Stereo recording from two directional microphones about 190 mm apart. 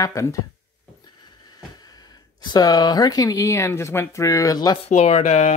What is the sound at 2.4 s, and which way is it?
Speech, 20° left (ahead or behind).